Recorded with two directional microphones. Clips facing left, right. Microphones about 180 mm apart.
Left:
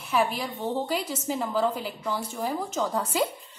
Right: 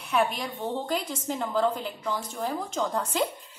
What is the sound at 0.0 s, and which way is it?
A woman's voice, 5° left (ahead or behind).